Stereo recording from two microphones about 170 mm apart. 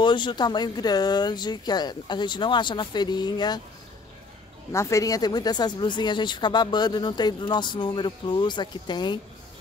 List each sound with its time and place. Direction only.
0.0 s speech: 25° left (ahead or behind)
4.7 s speech: 15° left (ahead or behind)